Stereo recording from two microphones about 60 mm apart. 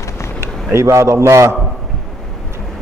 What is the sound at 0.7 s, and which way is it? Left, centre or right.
Speech, right.